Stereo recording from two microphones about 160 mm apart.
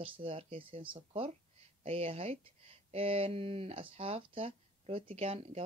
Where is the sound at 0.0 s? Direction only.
35° right (ahead or behind).